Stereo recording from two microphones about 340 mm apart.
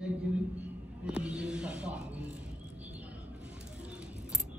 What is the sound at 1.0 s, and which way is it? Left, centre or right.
Music, centre.